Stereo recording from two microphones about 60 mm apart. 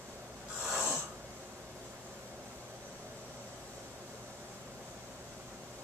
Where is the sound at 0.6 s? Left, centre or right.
Centre.